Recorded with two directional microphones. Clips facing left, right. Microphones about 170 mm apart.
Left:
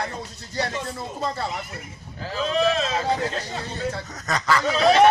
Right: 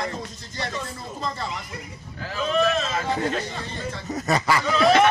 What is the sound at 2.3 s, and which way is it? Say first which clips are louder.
Speech: even; 35° left (ahead or behind).